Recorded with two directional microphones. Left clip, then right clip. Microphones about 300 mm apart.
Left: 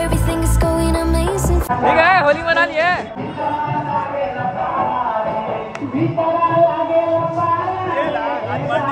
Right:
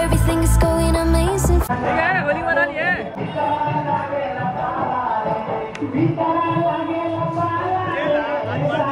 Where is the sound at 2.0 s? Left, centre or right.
Centre.